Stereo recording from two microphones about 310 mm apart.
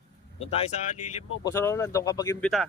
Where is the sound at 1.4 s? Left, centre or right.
Centre.